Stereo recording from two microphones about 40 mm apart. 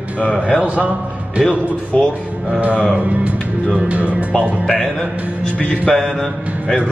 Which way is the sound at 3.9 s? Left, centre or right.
Right.